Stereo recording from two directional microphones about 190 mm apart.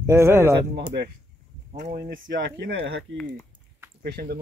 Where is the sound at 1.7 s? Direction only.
45° right (ahead or behind); by 3.2 s 75° right (ahead or behind).